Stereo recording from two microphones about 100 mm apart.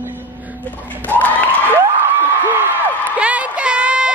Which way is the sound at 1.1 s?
20° left (ahead or behind).